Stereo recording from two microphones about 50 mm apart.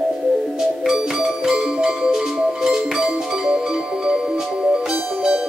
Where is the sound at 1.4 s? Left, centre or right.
Centre.